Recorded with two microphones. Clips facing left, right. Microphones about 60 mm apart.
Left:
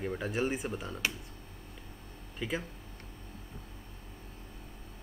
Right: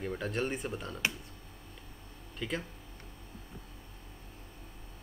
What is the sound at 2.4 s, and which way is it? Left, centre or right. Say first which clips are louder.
Speech: left 1 dB; centre.